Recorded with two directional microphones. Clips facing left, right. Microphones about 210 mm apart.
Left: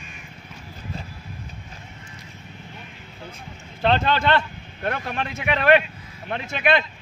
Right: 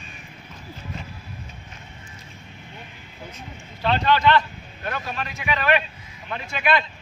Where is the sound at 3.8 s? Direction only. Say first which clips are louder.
Left 1 dB; 50° left (ahead or behind).